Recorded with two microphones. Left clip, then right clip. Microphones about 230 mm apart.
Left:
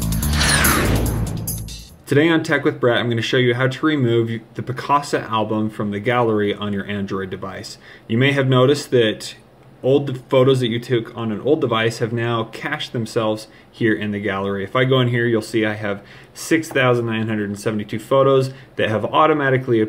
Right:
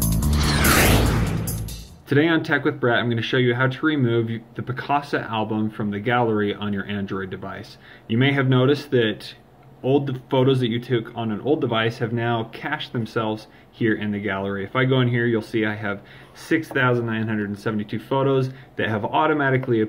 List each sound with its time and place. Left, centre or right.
0.0 s music: centre
0.3 s music: left
0.8 s music: right
2.0 s speech: centre